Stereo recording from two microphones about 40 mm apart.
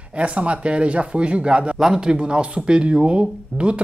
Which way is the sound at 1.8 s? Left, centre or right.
Centre.